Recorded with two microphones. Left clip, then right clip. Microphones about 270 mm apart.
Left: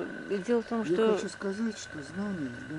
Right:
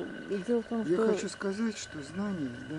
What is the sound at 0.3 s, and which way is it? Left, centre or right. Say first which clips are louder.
Speech: left 2 dB; centre.